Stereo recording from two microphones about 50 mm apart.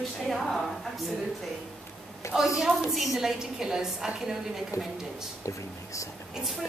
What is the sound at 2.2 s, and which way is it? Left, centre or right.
Speech, left.